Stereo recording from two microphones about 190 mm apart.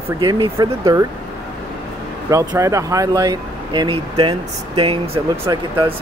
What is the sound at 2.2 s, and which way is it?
Speech, 15° right (ahead or behind).